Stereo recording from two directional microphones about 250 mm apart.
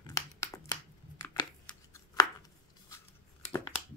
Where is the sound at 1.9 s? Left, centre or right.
Centre.